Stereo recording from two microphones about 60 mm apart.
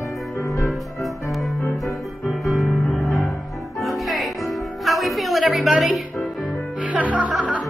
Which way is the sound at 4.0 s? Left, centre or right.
Centre.